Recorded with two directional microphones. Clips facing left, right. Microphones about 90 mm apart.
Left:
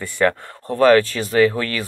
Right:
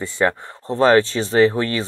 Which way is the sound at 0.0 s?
20° right (ahead or behind).